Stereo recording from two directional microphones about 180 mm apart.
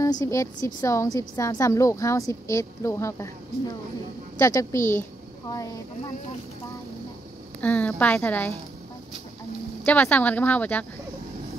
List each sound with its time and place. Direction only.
0.2 s a woman's voice: 20° left (ahead or behind)
7.6 s a woman's voice: 10° left (ahead or behind)
9.8 s a woman's voice: 10° left (ahead or behind)